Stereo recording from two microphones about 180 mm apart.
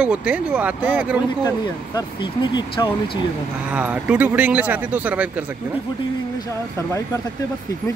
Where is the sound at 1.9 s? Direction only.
25° left (ahead or behind).